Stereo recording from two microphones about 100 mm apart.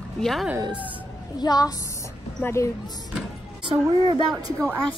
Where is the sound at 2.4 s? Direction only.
25° left (ahead or behind).